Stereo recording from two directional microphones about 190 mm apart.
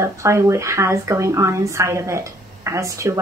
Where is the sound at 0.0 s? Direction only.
15° right (ahead or behind).